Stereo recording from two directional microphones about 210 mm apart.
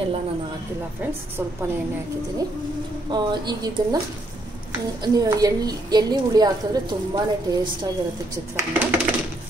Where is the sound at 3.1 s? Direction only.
20° right (ahead or behind).